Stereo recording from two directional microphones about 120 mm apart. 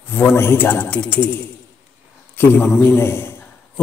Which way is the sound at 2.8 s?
20° left (ahead or behind).